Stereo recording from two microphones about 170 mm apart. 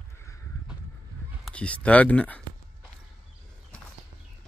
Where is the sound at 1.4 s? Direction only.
5° left (ahead or behind).